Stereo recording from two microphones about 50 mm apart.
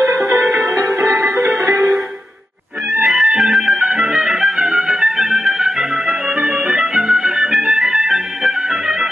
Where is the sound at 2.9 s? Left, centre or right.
Centre.